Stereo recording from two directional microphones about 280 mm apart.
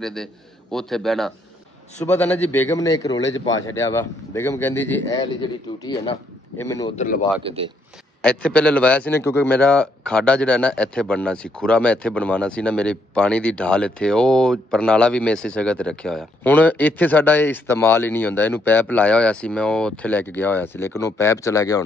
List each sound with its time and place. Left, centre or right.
0.0 s a man's voice: centre
3.2 s a man's voice: left
3.6 s a man's voice: centre
7.0 s speech: left
7.4 s a man's voice: centre
8.2 s a man's voice: centre